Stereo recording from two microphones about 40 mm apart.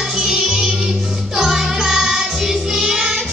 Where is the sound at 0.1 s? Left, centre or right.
Centre.